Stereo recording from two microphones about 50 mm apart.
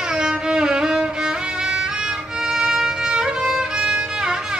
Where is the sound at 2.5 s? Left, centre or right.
Centre.